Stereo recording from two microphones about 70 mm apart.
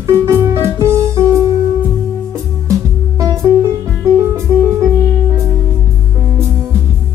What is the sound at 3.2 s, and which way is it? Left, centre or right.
Music, right.